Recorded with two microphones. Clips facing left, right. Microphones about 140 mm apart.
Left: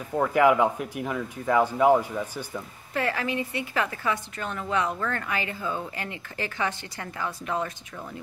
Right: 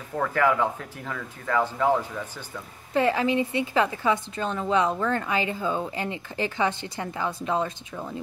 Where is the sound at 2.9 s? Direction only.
20° right (ahead or behind).